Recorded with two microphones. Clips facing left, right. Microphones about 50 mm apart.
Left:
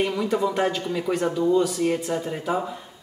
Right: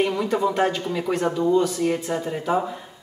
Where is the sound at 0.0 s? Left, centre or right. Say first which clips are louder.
Right 1 dB; centre.